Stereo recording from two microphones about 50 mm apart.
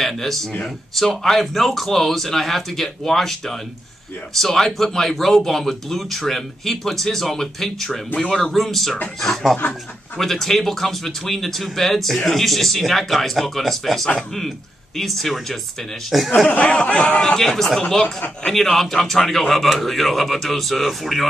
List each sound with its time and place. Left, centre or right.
0.0 s speech: centre
10.1 s speech: centre
16.4 s speech: left
17.4 s speech: centre